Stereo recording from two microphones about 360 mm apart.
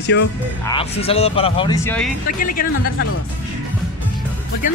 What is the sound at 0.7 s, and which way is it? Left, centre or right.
Speech, centre.